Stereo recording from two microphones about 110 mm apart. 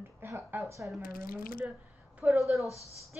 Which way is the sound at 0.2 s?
20° right (ahead or behind).